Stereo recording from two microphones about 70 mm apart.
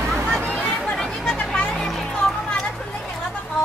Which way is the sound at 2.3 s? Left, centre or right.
Centre.